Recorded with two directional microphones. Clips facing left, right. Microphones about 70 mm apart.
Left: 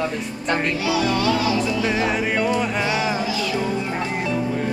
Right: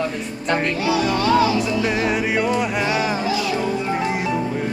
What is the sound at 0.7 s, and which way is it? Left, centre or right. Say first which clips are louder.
Music: right 1 dB; right.